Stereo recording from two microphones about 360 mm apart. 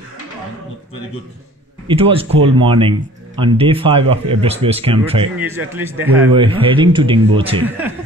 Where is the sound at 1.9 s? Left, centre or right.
Centre.